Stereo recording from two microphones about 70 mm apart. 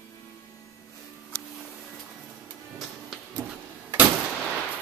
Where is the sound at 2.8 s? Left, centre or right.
Centre.